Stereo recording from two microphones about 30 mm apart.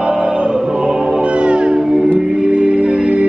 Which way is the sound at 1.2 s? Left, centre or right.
Right.